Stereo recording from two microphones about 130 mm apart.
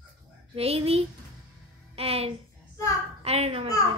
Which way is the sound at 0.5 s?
50° right (ahead or behind).